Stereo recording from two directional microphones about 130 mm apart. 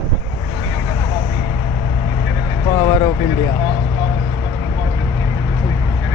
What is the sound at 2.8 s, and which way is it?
Vehicle, 30° left (ahead or behind).